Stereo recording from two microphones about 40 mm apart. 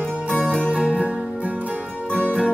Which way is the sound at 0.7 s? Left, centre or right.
Right.